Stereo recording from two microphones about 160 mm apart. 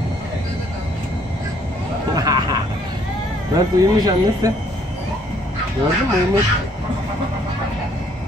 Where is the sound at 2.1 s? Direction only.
25° right (ahead or behind).